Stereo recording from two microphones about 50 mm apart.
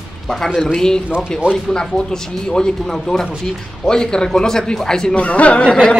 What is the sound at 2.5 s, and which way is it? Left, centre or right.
Speech, centre.